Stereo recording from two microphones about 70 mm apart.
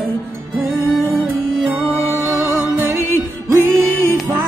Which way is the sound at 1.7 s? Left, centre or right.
Right.